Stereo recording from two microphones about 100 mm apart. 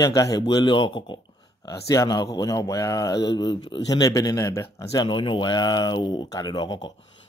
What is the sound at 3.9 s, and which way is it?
A man's voice, 40° left (ahead or behind).